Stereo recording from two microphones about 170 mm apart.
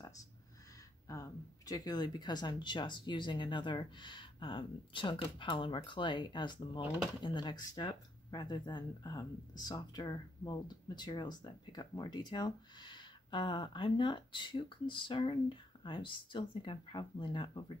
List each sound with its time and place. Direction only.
1.0 s speech: 20° left (ahead or behind)